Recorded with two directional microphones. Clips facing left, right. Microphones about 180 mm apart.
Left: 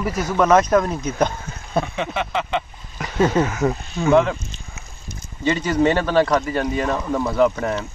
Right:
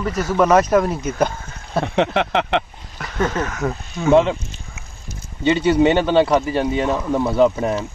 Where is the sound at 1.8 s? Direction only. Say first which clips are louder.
Right 7 dB; 70° right (ahead or behind).